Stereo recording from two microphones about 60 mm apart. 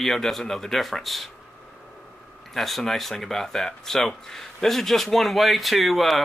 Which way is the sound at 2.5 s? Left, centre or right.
Centre.